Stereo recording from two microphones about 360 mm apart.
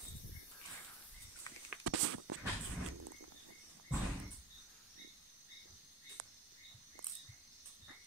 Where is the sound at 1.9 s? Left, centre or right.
Right.